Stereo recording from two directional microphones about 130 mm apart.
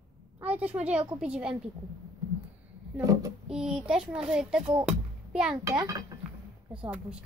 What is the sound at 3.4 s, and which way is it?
A woman's voice, 5° right (ahead or behind).